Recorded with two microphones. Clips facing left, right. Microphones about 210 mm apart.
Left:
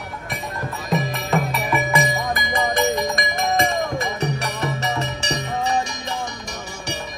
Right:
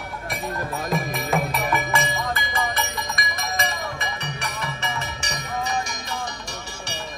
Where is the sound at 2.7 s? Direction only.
45° left (ahead or behind).